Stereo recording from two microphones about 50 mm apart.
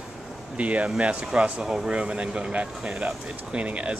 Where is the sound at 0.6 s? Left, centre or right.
Right.